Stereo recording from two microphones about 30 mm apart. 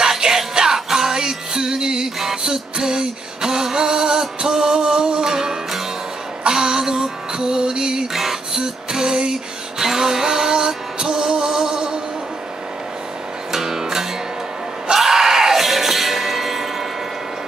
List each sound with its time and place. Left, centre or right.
0.0 s music: centre
2.1 s music: centre
8.1 s music: centre
13.5 s music: centre